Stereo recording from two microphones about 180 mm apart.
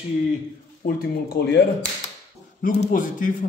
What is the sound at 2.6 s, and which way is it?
Speech, 45° left (ahead or behind).